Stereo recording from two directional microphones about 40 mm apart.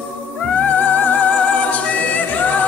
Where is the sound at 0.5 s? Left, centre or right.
Left.